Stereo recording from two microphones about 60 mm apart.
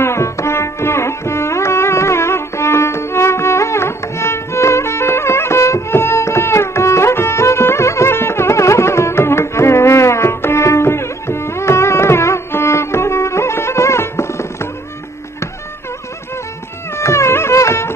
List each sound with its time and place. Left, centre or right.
0.0 s music: left
16.9 s music: left